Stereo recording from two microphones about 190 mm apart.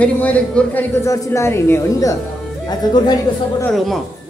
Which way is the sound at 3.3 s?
20° left (ahead or behind).